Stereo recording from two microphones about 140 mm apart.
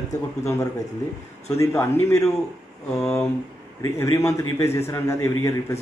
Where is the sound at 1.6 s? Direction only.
20° left (ahead or behind).